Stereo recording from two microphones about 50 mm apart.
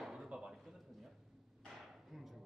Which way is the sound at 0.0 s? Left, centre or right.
Centre.